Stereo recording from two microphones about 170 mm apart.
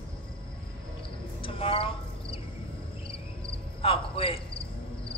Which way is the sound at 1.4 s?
30° left (ahead or behind).